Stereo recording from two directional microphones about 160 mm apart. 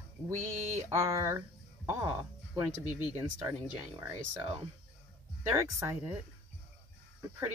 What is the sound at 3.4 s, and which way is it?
Speech, 20° right (ahead or behind).